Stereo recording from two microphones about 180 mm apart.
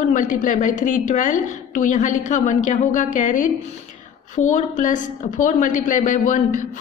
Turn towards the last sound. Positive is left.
turn(degrees=45)  # may be behind; listen again after turning